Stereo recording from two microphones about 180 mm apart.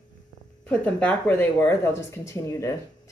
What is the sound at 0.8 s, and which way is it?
A woman's voice, 5° left (ahead or behind).